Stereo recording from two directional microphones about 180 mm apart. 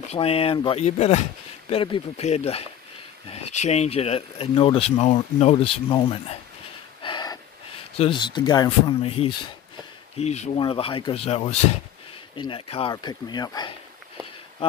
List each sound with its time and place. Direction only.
0.1 s speech: 35° left (ahead or behind)
7.0 s a sound: 25° left (ahead or behind)
10.1 s speech: 40° left (ahead or behind)